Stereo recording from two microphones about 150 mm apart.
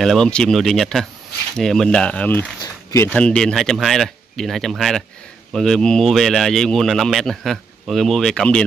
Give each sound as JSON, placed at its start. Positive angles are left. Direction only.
{"t": 0.0, "sound": "speech", "side_deg": 5}
{"t": 2.6, "sound": "a sound", "side_deg": 20}
{"t": 3.1, "sound": "speech", "side_deg": 10}